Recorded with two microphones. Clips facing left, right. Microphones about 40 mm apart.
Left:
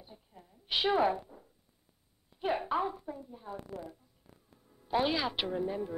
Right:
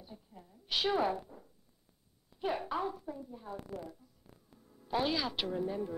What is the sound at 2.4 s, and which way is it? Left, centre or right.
A woman's voice, centre.